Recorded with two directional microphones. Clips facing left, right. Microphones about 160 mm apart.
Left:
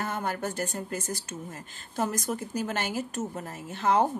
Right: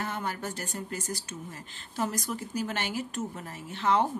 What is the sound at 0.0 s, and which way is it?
A woman's voice, 50° left (ahead or behind).